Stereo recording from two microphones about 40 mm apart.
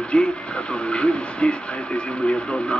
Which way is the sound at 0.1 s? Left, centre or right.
Left.